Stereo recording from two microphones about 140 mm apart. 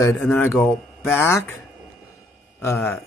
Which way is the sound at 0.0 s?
15° left (ahead or behind).